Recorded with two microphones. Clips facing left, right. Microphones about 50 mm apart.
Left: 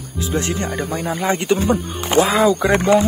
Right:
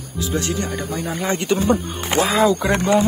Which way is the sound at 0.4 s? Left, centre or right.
Left.